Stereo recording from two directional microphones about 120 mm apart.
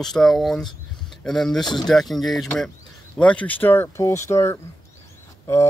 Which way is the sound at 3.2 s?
10° left (ahead or behind).